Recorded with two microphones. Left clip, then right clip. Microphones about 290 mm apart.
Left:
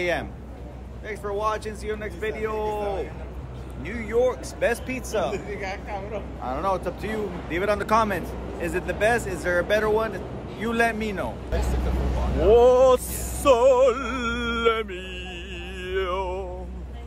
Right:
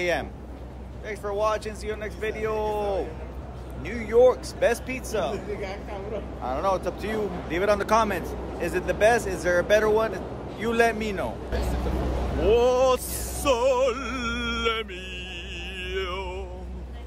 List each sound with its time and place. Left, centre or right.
0.0 s speech: centre
5.3 s speech: left
6.4 s speech: centre
12.4 s music: centre